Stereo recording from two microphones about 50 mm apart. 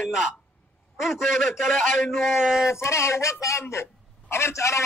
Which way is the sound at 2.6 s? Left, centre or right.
Left.